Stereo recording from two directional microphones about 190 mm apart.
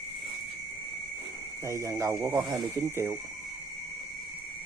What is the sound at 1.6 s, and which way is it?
Speech, 15° right (ahead or behind).